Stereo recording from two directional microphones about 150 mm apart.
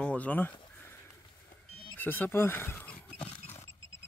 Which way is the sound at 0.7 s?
15° left (ahead or behind).